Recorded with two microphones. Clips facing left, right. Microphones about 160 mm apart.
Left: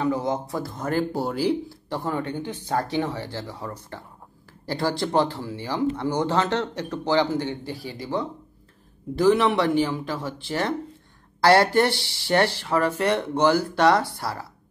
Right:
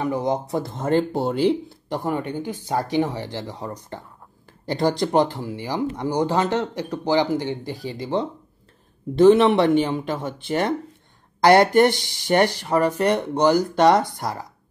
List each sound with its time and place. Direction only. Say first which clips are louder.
0.0 s speech: right 1 dB; 15° right (ahead or behind)
11.4 s speech: right 3 dB; 20° right (ahead or behind)